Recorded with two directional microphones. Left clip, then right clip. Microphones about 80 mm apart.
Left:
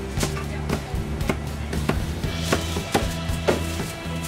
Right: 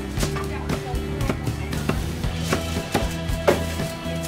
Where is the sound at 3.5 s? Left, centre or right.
Right.